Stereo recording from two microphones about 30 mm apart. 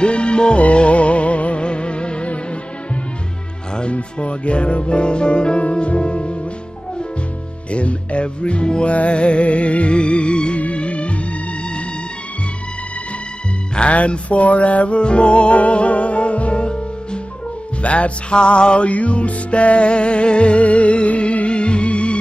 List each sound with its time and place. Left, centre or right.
0.0 s music: left
3.9 s music: left
5.6 s music: left
7.7 s music: left
8.8 s music: left
13.7 s music: left
18.3 s music: left
18.9 s music: left